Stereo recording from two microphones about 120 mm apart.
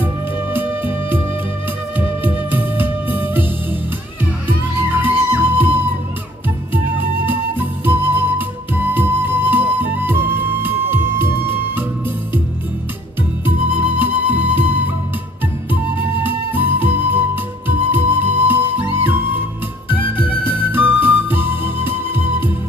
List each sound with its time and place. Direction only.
0.0 s music: 15° right (ahead or behind)
4.9 s music: 15° right (ahead or behind)
13.5 s music: 15° right (ahead or behind)
15.7 s flute: 15° right (ahead or behind)
17.6 s music: 15° right (ahead or behind)